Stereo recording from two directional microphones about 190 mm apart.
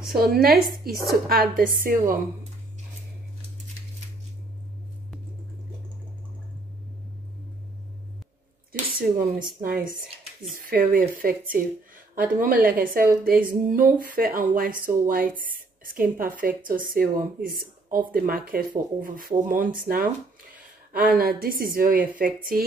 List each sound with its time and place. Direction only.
0.1 s speech: 55° right (ahead or behind)
8.8 s speech: 25° right (ahead or behind)
9.6 s speech: 50° right (ahead or behind)